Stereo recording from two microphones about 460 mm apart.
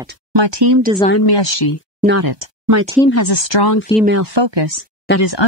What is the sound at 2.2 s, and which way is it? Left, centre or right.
Speech, right.